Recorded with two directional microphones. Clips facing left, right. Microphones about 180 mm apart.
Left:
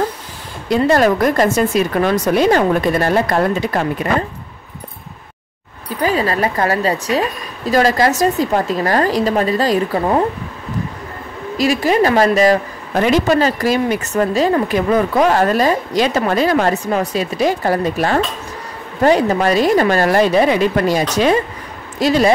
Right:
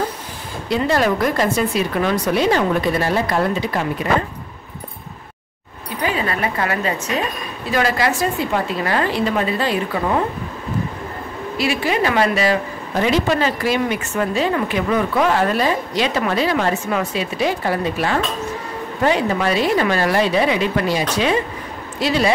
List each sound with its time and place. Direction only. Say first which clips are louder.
0.7 s speech: left 5 dB; 45° left (ahead or behind)
6.0 s speech: left 5 dB; 40° left (ahead or behind)
11.5 s speech: left 5 dB; 40° left (ahead or behind)